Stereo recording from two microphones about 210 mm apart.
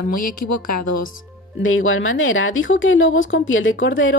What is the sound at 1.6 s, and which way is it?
Speech, 70° left (ahead or behind).